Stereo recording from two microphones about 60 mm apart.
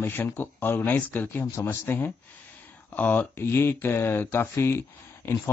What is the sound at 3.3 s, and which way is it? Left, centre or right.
Speech, left.